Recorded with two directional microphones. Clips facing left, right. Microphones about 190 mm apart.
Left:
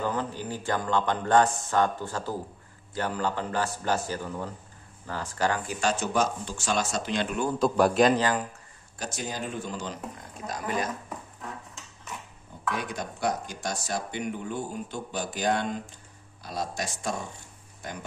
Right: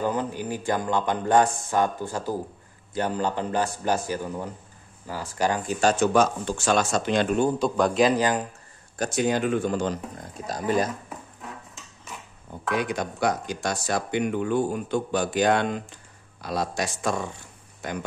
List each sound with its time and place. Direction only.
0.0 s speech: 15° right (ahead or behind)
5.8 s speech: 45° right (ahead or behind)
6.1 s speech: 60° right (ahead or behind)
7.5 s a man's voice: 5° left (ahead or behind)
8.2 s speech: 20° right (ahead or behind)
8.9 s speech: 55° right (ahead or behind)
10.4 s speech: 35° right (ahead or behind)
12.7 s speech: 75° right (ahead or behind)